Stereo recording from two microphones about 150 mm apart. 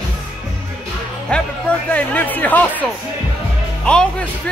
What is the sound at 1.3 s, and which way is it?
Music, 5° left (ahead or behind).